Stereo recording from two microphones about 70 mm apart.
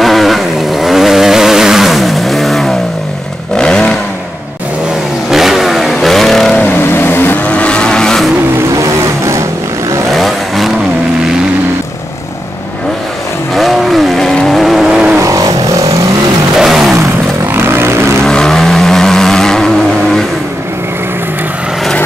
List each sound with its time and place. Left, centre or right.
0.0 s vehicle: centre
5.3 s vehicle: centre
6.6 s vehicle: left
7.4 s vehicle: centre
8.7 s vehicle: right
10.1 s vehicle: centre
13.6 s vehicle: centre
15.2 s vehicle: right
16.5 s vehicle: centre
17.6 s vehicle: right
18.2 s vehicle: centre